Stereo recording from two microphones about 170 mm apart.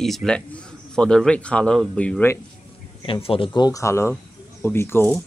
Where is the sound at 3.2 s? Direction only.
30° left (ahead or behind).